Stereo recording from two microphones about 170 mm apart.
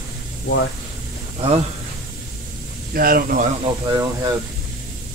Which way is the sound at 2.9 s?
60° right (ahead or behind).